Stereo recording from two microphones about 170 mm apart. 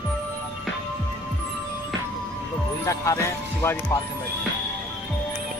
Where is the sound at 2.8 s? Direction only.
15° left (ahead or behind).